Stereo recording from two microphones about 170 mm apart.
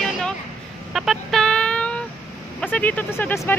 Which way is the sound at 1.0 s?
Centre (ahead or behind).